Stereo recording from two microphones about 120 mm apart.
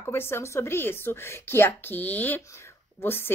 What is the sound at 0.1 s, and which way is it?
Speech, 20° left (ahead or behind).